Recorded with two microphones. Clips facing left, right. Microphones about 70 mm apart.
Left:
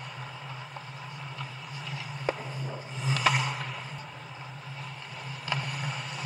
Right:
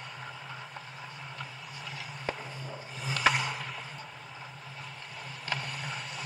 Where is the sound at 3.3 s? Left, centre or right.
Left.